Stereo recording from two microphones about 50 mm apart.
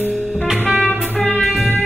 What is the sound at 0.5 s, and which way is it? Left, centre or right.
Jazz, right.